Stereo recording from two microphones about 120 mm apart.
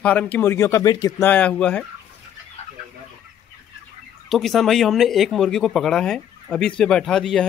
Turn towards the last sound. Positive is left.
turn(degrees=5)  # may be behind; listen again after turning